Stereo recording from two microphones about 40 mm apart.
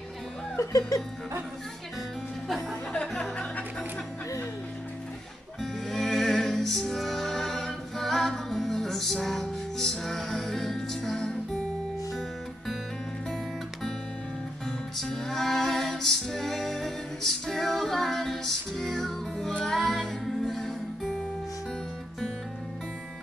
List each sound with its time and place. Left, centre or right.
2.4 s music: centre
5.6 s music: centre
15.0 s music: centre